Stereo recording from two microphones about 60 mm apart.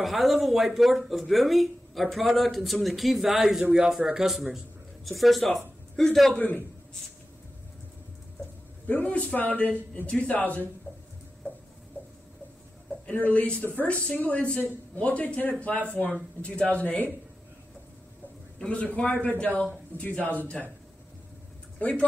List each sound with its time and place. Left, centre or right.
0.0 s speech: centre
6.3 s a man's voice: left
8.8 s a man's voice: left
13.0 s a man's voice: left
18.6 s a man's voice: centre
21.7 s speech: centre